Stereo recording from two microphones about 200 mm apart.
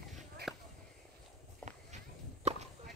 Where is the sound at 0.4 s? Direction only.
55° right (ahead or behind).